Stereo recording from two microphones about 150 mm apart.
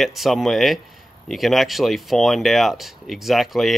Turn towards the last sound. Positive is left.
turn(degrees=0)  # may be behind; listen again after turning